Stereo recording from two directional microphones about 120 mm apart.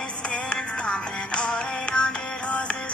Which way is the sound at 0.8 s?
10° left (ahead or behind).